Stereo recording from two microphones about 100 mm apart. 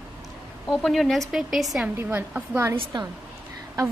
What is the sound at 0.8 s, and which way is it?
Speech, centre (ahead or behind).